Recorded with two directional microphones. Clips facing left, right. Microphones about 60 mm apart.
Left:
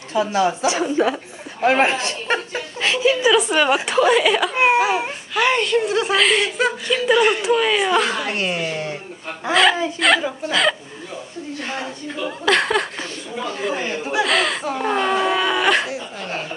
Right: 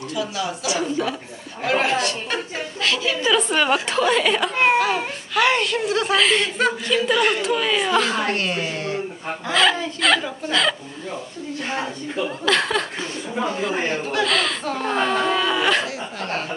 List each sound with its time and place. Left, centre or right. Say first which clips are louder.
0.1 s a woman's voice: left 8 dB; left; by 4.5 s centre
4.6 s baby cry: even; centre
5.4 s a woman's voice: left 2 dB; centre
12.4 s a woman's voice: left 3 dB; centre
14.0 s speech: left 5 dB; centre